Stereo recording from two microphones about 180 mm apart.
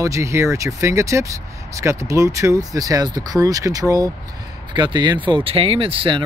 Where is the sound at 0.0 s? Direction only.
15° right (ahead or behind).